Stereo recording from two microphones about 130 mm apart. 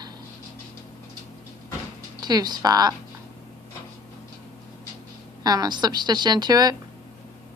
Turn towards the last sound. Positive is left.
turn(degrees=-30)  # may be behind; listen again after turning